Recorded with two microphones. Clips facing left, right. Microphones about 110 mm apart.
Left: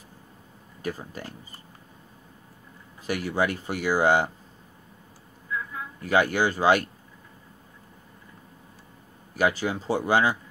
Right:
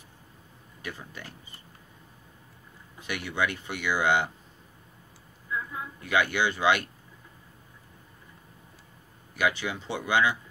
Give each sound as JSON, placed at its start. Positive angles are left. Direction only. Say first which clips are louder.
{"t": 0.8, "sound": "speech", "louder": "left 7 dB", "side_deg": 40}
{"t": 3.0, "sound": "speech", "louder": "left 4 dB", "side_deg": 40}
{"t": 5.9, "sound": "speech", "louder": "left 4 dB", "side_deg": 40}
{"t": 9.3, "sound": "speech", "louder": "left 4 dB", "side_deg": 40}